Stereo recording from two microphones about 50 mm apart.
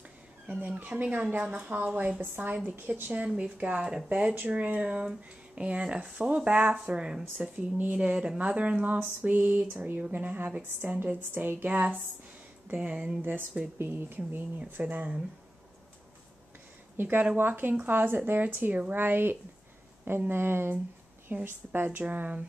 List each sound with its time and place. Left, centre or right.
0.5 s speech: right
3.1 s speech: right
4.4 s speech: right
10.7 s speech: right
12.9 s speech: centre
13.2 s speech: right
14.8 s speech: right
16.9 s speech: right
18.9 s speech: right
22.0 s speech: right